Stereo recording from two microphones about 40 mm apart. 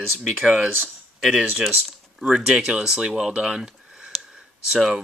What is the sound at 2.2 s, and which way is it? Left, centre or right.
Speech, centre.